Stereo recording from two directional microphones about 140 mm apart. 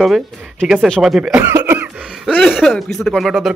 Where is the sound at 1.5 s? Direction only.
15° right (ahead or behind).